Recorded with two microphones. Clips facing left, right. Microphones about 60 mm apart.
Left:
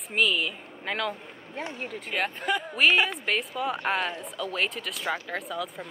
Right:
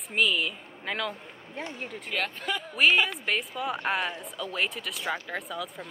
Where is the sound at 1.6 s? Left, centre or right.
Left.